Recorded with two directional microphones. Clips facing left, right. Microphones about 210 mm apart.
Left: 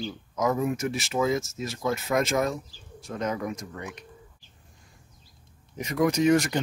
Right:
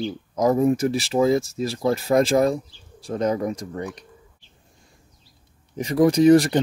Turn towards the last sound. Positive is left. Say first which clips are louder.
# right 7 dB
turn(degrees=-35)  # may be behind; listen again after turning